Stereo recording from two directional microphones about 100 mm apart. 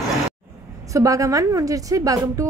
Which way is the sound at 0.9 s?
35° right (ahead or behind).